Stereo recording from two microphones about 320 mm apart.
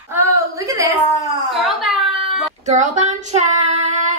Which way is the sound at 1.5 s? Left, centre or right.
Centre.